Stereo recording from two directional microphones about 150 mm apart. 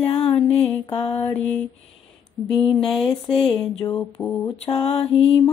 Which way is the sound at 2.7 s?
35° left (ahead or behind).